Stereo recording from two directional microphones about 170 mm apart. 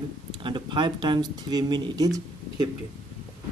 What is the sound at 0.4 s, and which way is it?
Speech, 30° right (ahead or behind).